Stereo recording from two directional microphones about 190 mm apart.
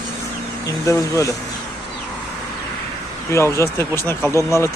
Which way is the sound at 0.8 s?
15° left (ahead or behind).